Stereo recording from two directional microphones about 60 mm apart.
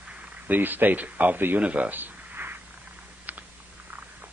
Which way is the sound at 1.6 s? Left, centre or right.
Right.